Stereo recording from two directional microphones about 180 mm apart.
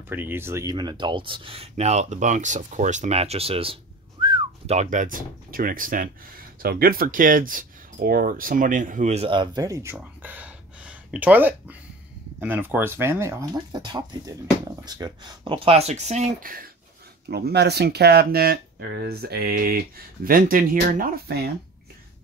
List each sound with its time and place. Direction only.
0.1 s speech: 10° right (ahead or behind); by 3.7 s 35° right (ahead or behind)
4.2 s whistling: 25° right (ahead or behind)
4.7 s speech: 45° right (ahead or behind); by 9.9 s 20° right (ahead or behind)
10.2 s a sound: 10° right (ahead or behind)
12.4 s speech: 10° right (ahead or behind); by 16.5 s 40° right (ahead or behind)
17.3 s speech: 65° right (ahead or behind)